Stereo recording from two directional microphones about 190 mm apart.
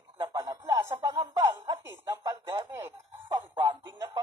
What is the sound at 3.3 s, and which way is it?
Music, 25° right (ahead or behind).